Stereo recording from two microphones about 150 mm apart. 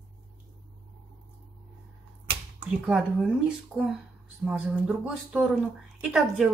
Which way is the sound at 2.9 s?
5° right (ahead or behind).